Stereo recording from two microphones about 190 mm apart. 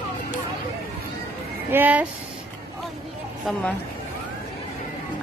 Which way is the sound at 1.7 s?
10° right (ahead or behind).